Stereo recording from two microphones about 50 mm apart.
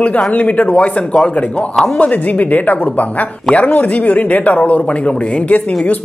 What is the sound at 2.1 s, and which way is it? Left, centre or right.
Speech, left.